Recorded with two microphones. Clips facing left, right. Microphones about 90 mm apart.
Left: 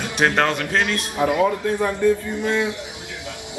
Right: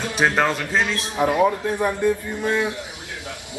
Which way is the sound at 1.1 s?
25° right (ahead or behind).